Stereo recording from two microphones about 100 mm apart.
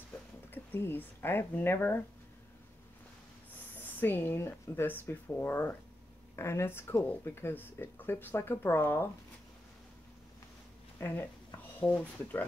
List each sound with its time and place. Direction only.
0.5 s speech: 20° left (ahead or behind)
3.7 s speech: 20° left (ahead or behind)
11.0 s speech: 20° left (ahead or behind)